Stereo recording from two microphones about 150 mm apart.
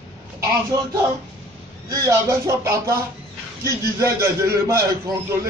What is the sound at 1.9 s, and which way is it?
A man's voice, 20° right (ahead or behind).